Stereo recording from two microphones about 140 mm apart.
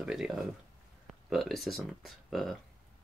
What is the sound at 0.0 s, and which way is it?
Speech, 5° right (ahead or behind).